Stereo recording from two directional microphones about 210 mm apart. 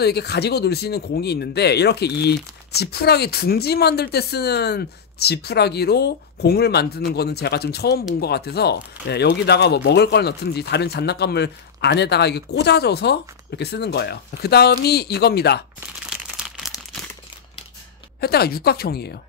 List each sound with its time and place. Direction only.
0.0 s speech: 50° left (ahead or behind)
16.3 s crumpling: 5° right (ahead or behind)
18.2 s speech: 50° left (ahead or behind)